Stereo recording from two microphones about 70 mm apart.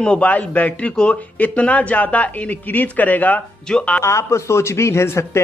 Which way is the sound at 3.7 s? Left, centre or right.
Centre.